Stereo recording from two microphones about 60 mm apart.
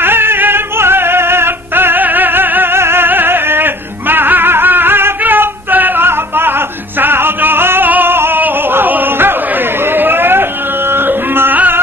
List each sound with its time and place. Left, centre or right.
0.0 s music: right
9.8 s chatter: right
10.9 s music: right